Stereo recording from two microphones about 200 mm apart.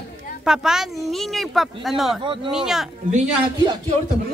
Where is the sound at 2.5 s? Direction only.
Centre (ahead or behind).